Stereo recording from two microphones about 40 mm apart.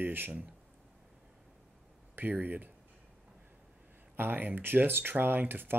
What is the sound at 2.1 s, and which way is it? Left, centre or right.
Speech, right.